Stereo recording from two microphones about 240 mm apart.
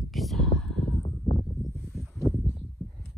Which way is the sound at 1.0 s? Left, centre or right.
Left.